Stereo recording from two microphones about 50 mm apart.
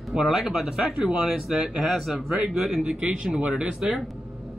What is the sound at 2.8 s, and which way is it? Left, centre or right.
Speech, centre.